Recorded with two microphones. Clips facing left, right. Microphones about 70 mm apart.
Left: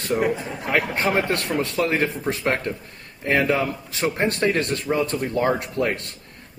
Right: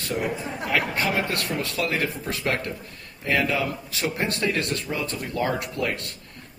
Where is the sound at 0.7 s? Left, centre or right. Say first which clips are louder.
Left 3 dB; left.